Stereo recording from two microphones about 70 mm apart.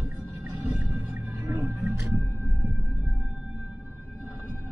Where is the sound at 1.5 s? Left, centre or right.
Right.